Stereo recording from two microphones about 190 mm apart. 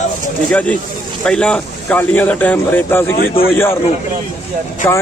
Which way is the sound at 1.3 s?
5° left (ahead or behind).